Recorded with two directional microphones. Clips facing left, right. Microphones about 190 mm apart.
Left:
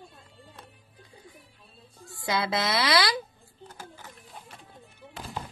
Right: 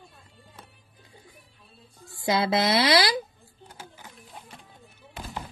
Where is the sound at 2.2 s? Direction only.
25° right (ahead or behind).